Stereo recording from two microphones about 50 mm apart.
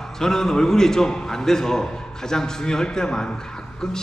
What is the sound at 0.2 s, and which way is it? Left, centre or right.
A man's voice, centre.